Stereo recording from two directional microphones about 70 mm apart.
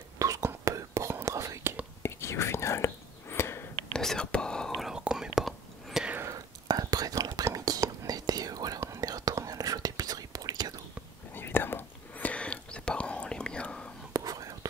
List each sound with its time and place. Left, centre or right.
0.2 s whispering: right
2.0 s whispering: left
3.9 s whispering: centre
4.7 s whispering: centre
6.2 s whispering: right
8.7 s whispering: right
11.3 s whispering: left
14.1 s whispering: right